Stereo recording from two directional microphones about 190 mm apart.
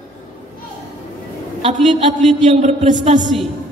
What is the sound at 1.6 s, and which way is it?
A man's voice, 30° right (ahead or behind).